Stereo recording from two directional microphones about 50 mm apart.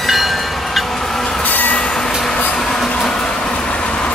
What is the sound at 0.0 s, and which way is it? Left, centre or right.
Train, centre.